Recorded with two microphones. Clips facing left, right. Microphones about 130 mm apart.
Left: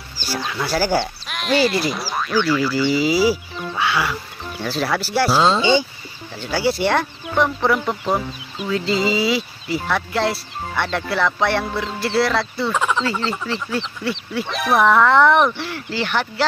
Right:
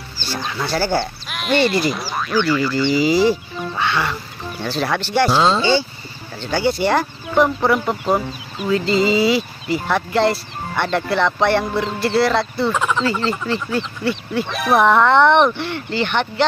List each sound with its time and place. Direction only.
0.2 s sheep: 10° left (ahead or behind)
0.7 s speech: 10° left (ahead or behind)
0.9 s speech: centre (ahead or behind)
5.6 s speech: 15° left (ahead or behind)
6.4 s speech: 5° left (ahead or behind)